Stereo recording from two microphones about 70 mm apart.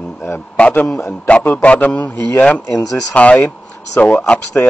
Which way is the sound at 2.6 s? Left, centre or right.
Left.